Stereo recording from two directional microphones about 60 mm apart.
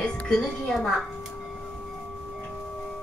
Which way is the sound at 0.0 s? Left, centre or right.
Centre.